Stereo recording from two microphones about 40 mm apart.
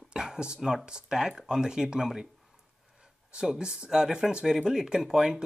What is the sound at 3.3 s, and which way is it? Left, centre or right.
Speech, centre.